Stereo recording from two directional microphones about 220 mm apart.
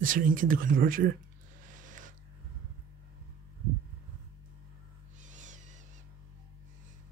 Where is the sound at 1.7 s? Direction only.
35° right (ahead or behind).